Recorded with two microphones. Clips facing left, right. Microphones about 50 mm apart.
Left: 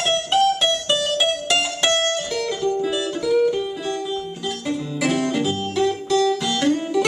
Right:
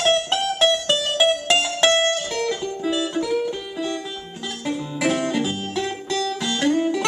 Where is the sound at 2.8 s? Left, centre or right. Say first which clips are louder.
Left 1 dB; centre.